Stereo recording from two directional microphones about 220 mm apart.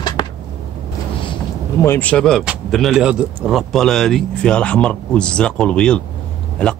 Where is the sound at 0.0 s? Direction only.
20° left (ahead or behind).